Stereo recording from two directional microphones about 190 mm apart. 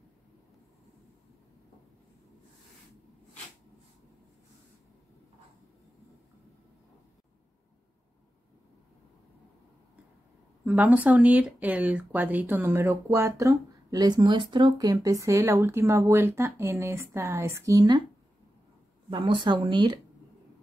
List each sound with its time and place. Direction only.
10.6 s speech: 10° right (ahead or behind)
19.0 s speech: 25° right (ahead or behind)